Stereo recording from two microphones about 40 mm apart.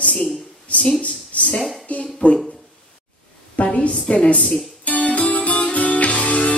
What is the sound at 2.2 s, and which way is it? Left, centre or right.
Speech, left.